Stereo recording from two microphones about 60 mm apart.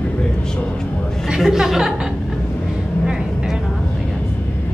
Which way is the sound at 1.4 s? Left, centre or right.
Centre.